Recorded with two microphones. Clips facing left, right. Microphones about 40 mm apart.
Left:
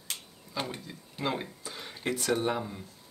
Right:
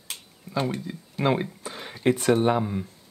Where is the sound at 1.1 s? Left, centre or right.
Right.